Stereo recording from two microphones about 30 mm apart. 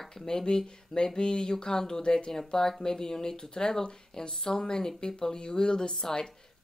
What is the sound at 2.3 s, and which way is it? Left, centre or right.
Speech, centre.